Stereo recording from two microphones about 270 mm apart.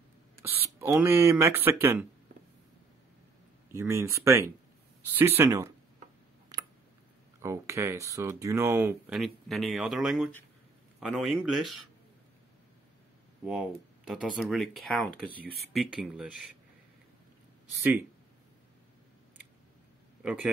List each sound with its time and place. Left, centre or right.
0.4 s speech: centre
3.7 s speech: centre
6.5 s a sound: centre
7.4 s speech: centre
13.5 s speech: centre
15.3 s speech: left
15.7 s speech: centre